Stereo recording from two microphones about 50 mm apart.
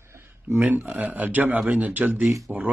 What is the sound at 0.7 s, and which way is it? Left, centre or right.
Speech, right.